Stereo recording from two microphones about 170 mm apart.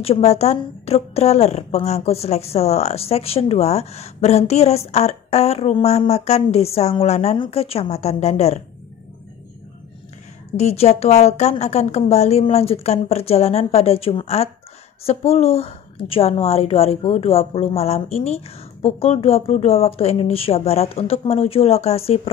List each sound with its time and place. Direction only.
0.0 s a woman's voice: 35° left (ahead or behind)
10.5 s a woman's voice: 40° left (ahead or behind)